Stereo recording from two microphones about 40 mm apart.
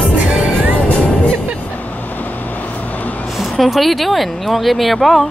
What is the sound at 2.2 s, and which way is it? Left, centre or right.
Vehicle, left.